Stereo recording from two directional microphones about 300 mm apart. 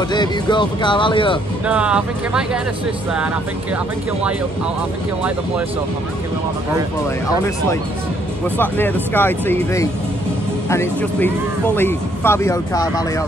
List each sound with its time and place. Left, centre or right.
0.1 s speech: centre
1.7 s speech: centre
8.5 s speech: centre